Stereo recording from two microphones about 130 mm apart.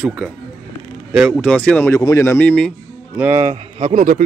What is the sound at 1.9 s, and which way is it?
Speech, 25° left (ahead or behind).